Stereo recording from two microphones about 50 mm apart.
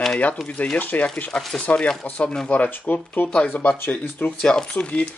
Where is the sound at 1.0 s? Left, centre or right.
Left.